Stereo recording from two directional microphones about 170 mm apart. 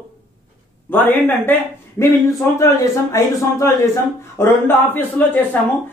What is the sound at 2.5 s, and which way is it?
Speech, 15° left (ahead or behind).